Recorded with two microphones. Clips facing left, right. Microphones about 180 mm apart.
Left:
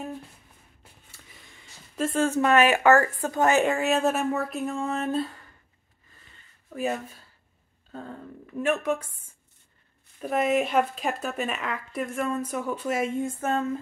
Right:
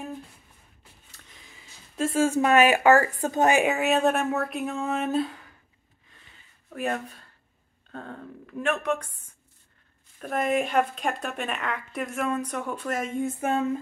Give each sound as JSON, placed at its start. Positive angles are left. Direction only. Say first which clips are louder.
{"t": 1.1, "sound": "a sound", "louder": "right 1 dB", "side_deg": 5}
{"t": 2.2, "sound": "speech", "louder": "right 1 dB", "side_deg": -15}
{"t": 3.7, "sound": "speech", "louder": "right 1 dB", "side_deg": 0}
{"t": 6.7, "sound": "speech", "louder": "left 1 dB", "side_deg": 0}
{"t": 10.2, "sound": "speech", "louder": "left 2 dB", "side_deg": 5}
{"t": 13.4, "sound": "speech", "louder": "right 2 dB", "side_deg": -10}